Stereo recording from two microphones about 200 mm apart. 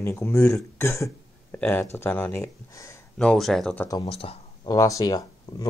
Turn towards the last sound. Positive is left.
turn(degrees=20)  # may be behind; listen again after turning